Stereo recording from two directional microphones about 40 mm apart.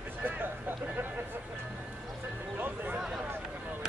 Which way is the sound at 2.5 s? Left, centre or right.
Right.